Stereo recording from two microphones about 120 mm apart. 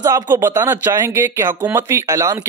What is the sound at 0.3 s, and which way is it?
A man's voice, 20° right (ahead or behind).